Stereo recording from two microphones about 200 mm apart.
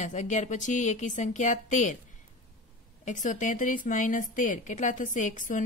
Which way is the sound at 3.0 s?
40° left (ahead or behind).